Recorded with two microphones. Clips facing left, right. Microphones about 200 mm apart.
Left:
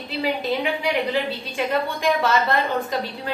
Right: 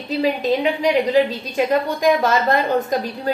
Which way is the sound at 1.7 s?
40° right (ahead or behind).